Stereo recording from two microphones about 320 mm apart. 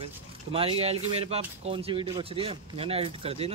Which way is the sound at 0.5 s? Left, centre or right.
Centre.